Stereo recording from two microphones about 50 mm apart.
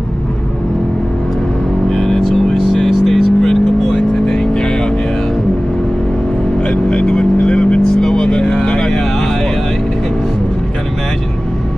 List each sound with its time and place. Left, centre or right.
1.9 s vehicle: centre
6.7 s vehicle: left